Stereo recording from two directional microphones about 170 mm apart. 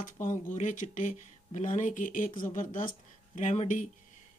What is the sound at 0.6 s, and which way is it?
Speech, 50° left (ahead or behind).